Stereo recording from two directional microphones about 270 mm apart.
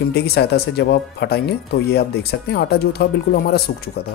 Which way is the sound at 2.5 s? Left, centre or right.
Left.